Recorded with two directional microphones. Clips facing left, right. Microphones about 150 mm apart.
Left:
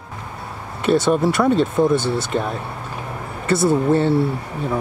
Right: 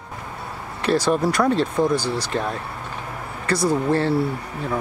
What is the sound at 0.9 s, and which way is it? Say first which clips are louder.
Speech: left 3 dB; centre (ahead or behind).